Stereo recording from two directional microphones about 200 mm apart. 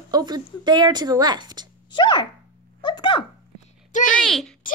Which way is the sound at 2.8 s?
20° left (ahead or behind).